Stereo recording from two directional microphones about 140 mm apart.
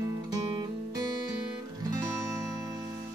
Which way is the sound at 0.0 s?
25° right (ahead or behind).